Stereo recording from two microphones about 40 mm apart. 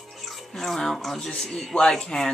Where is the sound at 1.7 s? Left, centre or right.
Left.